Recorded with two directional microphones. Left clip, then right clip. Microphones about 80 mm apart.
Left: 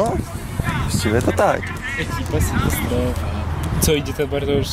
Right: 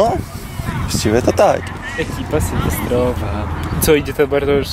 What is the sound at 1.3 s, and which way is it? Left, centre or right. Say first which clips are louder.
Speech: right 5 dB; centre.